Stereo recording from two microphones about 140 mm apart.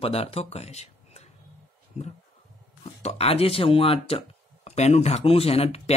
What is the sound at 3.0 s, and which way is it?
Speech, 45° left (ahead or behind).